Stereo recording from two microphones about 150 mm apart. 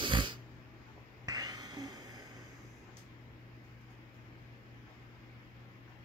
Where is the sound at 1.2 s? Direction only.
25° right (ahead or behind).